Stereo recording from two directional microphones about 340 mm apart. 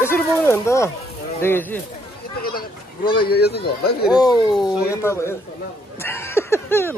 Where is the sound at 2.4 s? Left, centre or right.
Left.